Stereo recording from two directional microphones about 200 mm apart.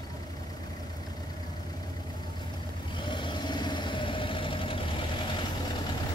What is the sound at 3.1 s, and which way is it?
Vehicle, 25° left (ahead or behind).